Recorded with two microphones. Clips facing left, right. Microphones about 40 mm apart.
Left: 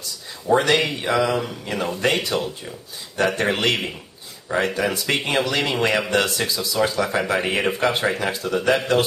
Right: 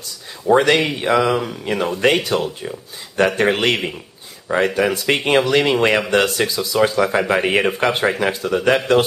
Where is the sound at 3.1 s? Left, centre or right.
Right.